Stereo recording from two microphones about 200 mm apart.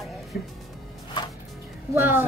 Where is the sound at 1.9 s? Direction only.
10° right (ahead or behind).